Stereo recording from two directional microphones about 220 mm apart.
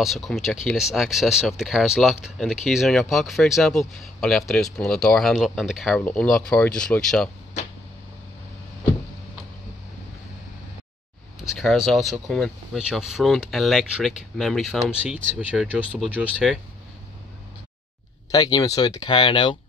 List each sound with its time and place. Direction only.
0.0 s speech: centre (ahead or behind)
11.4 s speech: centre (ahead or behind)
18.3 s speech: 20° left (ahead or behind)